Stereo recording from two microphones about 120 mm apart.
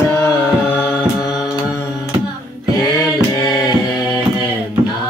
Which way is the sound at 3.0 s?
25° left (ahead or behind).